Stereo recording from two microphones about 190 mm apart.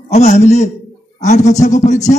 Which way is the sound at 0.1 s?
35° left (ahead or behind).